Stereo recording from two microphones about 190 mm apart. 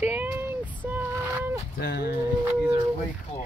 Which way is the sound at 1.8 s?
60° left (ahead or behind).